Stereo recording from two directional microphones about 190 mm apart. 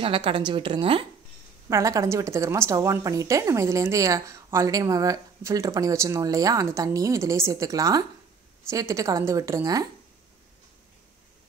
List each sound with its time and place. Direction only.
0.0 s a woman's voice: 25° right (ahead or behind)
1.7 s a woman's voice: 15° right (ahead or behind)